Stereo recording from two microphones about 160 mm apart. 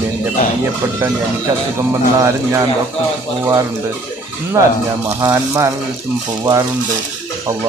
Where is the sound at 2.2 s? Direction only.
20° right (ahead or behind).